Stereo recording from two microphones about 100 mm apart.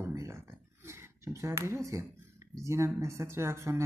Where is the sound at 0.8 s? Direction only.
25° right (ahead or behind).